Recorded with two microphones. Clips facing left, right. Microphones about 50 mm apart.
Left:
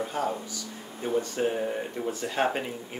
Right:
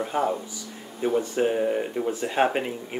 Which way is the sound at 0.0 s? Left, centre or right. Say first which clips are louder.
Right 4 dB; right.